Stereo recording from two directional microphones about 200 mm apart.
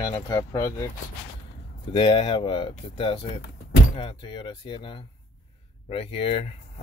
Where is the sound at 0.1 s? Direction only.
15° left (ahead or behind).